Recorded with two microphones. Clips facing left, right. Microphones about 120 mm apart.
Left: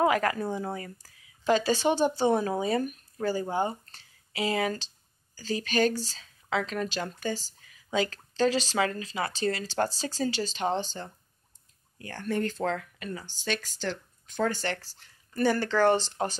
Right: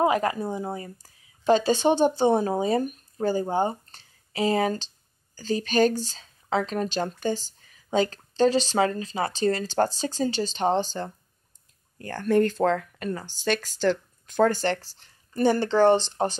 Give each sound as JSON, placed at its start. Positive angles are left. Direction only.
{"t": 0.0, "sound": "a woman's voice", "side_deg": -25}
{"t": 5.9, "sound": "speech", "side_deg": -25}
{"t": 6.5, "sound": "speech", "side_deg": -35}
{"t": 7.6, "sound": "a sound", "side_deg": -30}
{"t": 8.7, "sound": "a woman's voice", "side_deg": -30}
{"t": 12.0, "sound": "speech", "side_deg": -45}
{"t": 14.5, "sound": "speech", "side_deg": -30}